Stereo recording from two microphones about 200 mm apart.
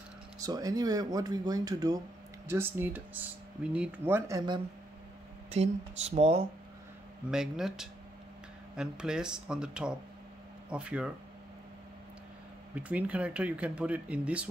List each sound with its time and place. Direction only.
0.4 s speech: 20° right (ahead or behind)
5.5 s speech: 30° right (ahead or behind)
7.2 s speech: 5° right (ahead or behind)
12.7 s speech: 5° right (ahead or behind)